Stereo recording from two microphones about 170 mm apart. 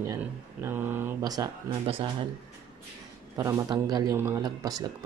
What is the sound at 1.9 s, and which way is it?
Speech, 30° right (ahead or behind).